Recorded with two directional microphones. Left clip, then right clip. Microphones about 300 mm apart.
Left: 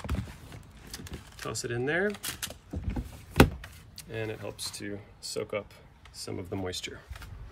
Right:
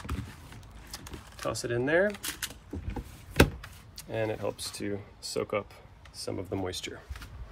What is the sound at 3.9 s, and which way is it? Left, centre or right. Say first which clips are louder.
Speech: right 5 dB; centre.